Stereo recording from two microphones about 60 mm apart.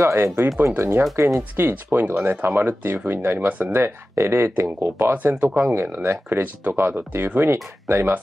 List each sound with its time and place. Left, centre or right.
0.0 s speech: right
0.7 s speech: right
1.1 s speech: right
1.6 s speech: right
2.9 s speech: right
3.3 s speech: right
3.7 s speech: right